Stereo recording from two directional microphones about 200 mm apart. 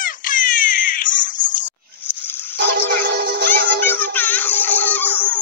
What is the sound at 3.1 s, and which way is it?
Music, 60° right (ahead or behind).